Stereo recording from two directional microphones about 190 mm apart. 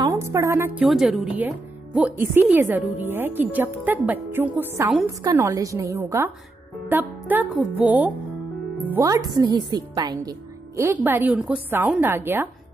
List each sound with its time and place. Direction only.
0.1 s a woman's voice: 15° right (ahead or behind)
0.8 s a woman's voice: centre (ahead or behind)